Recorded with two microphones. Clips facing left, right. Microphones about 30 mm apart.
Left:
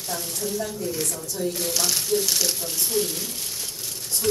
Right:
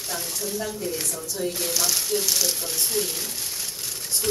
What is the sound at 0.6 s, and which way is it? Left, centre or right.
Speech, centre.